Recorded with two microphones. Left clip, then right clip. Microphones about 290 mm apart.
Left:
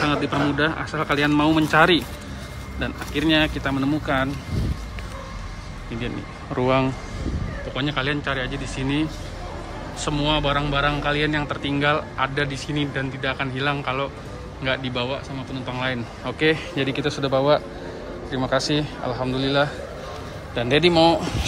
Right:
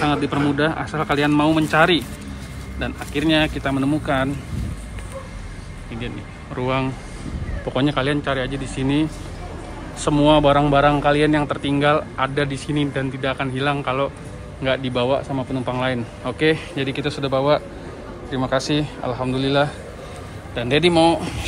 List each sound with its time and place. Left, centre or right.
0.0 s speech: centre
5.9 s speech: centre
10.0 s speech: centre